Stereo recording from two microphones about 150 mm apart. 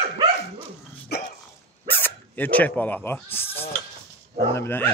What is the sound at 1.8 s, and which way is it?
Speech, 15° left (ahead or behind).